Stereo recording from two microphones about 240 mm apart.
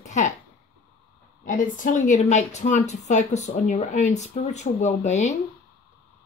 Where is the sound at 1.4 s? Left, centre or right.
Left.